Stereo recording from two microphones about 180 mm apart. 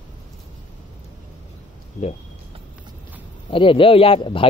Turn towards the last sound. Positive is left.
turn(degrees=30)  # may be behind; listen again after turning